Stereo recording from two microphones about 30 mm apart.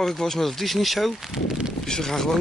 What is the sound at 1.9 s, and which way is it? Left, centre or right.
Speech, centre.